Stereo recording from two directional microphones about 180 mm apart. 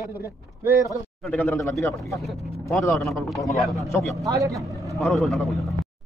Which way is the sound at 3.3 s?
Centre (ahead or behind).